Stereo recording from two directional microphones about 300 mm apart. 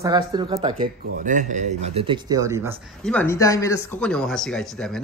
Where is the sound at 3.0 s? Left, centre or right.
Centre.